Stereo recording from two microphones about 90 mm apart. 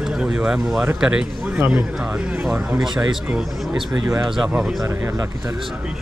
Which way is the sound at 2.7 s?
5° right (ahead or behind).